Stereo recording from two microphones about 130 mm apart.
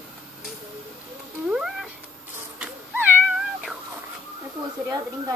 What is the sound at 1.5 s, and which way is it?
Cat, 5° right (ahead or behind).